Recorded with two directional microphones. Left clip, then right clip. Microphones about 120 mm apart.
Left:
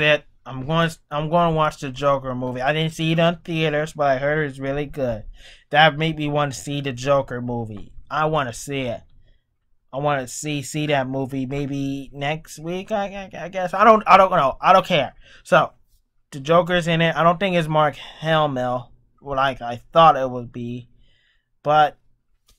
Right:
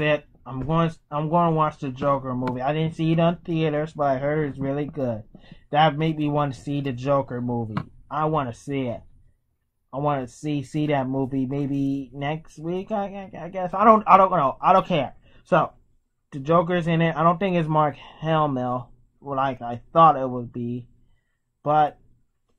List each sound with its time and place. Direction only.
0.0 s speech: 15° left (ahead or behind)
7.2 s speech: 25° left (ahead or behind)